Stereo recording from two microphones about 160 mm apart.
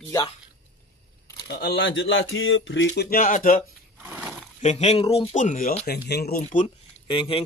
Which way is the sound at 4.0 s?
10° right (ahead or behind).